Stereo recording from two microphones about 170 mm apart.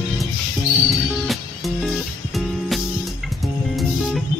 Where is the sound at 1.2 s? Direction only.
Centre (ahead or behind).